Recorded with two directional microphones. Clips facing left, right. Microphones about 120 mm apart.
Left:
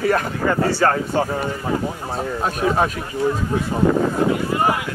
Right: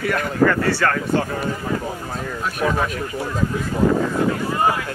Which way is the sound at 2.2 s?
35° left (ahead or behind).